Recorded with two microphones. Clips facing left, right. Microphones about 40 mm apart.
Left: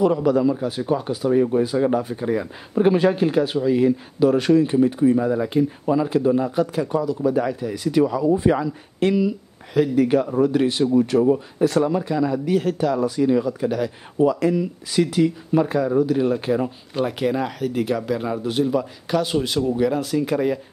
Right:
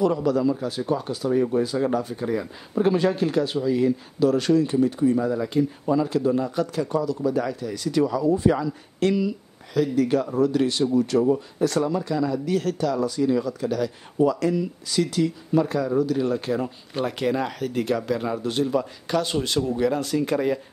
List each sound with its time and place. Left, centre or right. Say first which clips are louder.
0.0 s speech: left 3 dB; left; by 20.6 s centre